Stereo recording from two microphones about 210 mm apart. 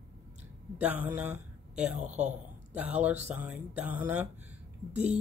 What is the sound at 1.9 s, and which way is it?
Speech, 35° right (ahead or behind).